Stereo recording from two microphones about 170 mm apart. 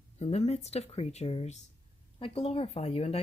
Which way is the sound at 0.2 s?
40° left (ahead or behind).